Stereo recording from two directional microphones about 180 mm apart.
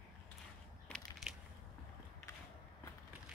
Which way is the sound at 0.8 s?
5° left (ahead or behind).